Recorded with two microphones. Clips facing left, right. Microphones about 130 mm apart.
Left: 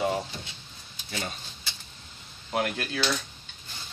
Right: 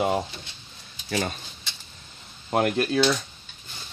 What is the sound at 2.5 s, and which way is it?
Speech, 45° right (ahead or behind).